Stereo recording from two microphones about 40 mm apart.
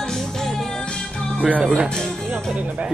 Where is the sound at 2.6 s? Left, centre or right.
Right.